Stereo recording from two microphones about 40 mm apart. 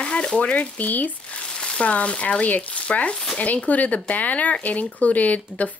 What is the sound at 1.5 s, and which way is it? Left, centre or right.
Speech, left.